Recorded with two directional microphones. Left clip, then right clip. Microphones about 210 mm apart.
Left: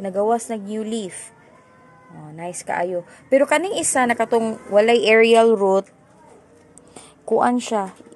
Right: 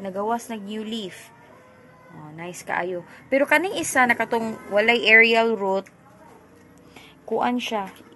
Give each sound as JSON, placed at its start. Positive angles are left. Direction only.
{"t": 0.0, "sound": "a woman's voice", "side_deg": 40}
{"t": 2.3, "sound": "a woman's voice", "side_deg": 35}
{"t": 6.9, "sound": "a sound", "side_deg": 35}